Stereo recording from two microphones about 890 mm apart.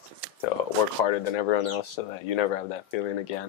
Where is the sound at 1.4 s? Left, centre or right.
Left.